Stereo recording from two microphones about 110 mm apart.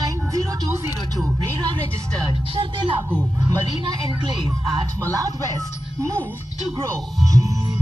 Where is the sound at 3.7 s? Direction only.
40° right (ahead or behind).